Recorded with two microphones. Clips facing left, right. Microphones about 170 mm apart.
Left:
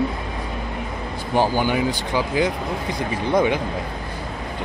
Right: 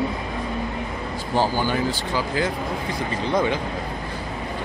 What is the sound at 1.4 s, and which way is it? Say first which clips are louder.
Speech: left 3 dB; 15° left (ahead or behind).